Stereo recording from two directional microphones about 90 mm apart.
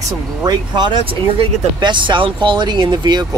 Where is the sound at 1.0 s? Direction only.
70° right (ahead or behind); by 3.2 s 50° right (ahead or behind).